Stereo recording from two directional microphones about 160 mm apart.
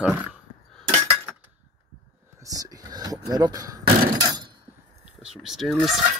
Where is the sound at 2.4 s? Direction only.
20° right (ahead or behind).